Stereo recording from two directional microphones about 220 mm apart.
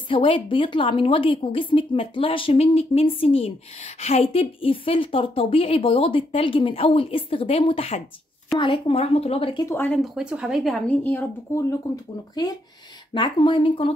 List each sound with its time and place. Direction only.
0.1 s a woman's voice: 25° left (ahead or behind)
9.8 s a woman's voice: 5° left (ahead or behind)
13.1 s a woman's voice: 20° left (ahead or behind)